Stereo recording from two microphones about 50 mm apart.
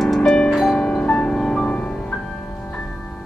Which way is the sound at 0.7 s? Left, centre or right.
Left.